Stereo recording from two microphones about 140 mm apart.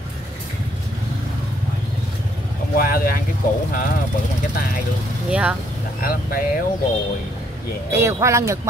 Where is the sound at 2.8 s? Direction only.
90° left.